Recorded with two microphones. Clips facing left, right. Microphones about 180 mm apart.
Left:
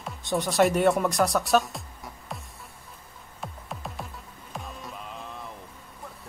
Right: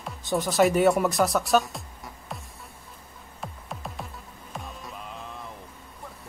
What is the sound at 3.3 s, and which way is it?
Music, centre (ahead or behind).